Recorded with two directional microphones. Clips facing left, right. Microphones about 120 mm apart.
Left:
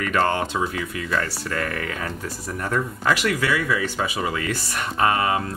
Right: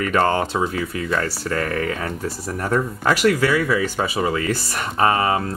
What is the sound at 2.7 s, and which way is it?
Speech, 35° right (ahead or behind).